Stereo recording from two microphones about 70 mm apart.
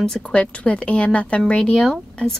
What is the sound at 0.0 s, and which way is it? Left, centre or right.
Speech, centre.